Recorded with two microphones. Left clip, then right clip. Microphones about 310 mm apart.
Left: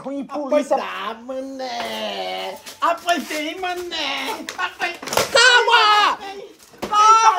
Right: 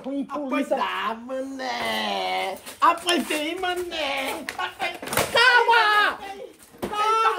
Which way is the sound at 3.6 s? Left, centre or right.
Centre.